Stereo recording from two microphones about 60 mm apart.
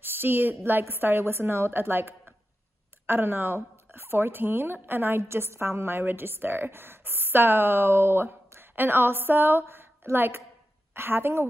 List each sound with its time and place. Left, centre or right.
0.0 s a woman's voice: right